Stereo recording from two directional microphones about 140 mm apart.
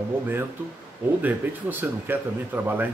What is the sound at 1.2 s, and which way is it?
Speech, 15° right (ahead or behind).